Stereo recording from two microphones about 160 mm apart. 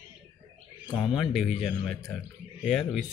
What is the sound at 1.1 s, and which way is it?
Speech, 5° right (ahead or behind).